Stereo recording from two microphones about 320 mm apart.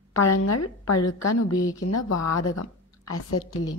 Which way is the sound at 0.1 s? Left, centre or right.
Left.